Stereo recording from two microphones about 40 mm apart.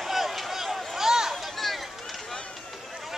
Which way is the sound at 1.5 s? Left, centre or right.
Centre.